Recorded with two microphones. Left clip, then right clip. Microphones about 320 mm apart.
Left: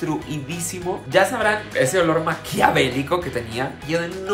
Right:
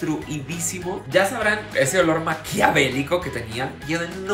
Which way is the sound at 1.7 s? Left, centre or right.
Centre.